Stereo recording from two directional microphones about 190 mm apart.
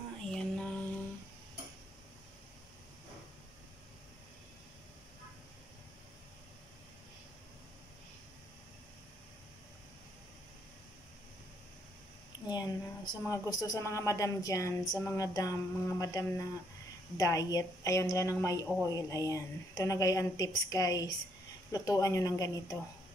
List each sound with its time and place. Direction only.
0.2 s music: 5° left (ahead or behind)
12.4 s a woman's voice: 20° left (ahead or behind)